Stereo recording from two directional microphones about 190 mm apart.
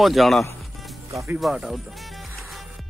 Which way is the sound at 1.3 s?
10° right (ahead or behind).